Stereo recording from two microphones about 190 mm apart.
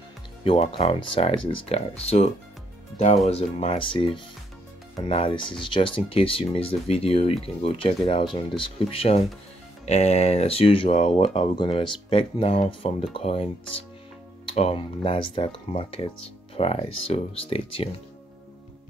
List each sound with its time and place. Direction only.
0.4 s speech: 30° left (ahead or behind)
3.3 s speech: 35° left (ahead or behind)
14.5 s speech: 30° left (ahead or behind)